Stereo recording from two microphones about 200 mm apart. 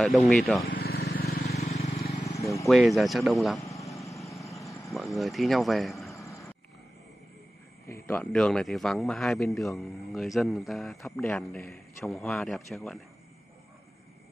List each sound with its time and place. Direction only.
0.0 s speech: centre (ahead or behind)
0.7 s vehicle: 50° left (ahead or behind)
1.5 s vehicle: 35° left (ahead or behind)
2.6 s speech: centre (ahead or behind)
3.6 s a sound: 15° left (ahead or behind)
4.9 s speech: centre (ahead or behind)
7.9 s speech: 10° left (ahead or behind)